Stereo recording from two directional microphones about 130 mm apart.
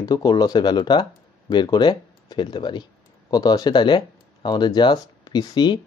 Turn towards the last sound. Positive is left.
turn(degrees=30)  # may be behind; listen again after turning